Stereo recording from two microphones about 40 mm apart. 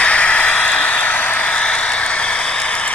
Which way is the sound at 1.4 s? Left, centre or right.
Left.